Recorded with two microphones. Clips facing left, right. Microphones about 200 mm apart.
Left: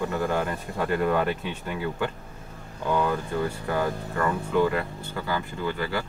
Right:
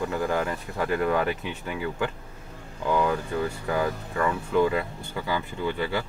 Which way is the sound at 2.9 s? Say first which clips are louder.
Even; 5° right (ahead or behind).